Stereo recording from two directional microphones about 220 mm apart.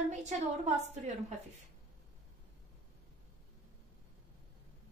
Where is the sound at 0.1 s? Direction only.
30° right (ahead or behind).